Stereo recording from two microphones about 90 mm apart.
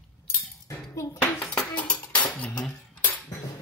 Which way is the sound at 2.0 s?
55° left (ahead or behind).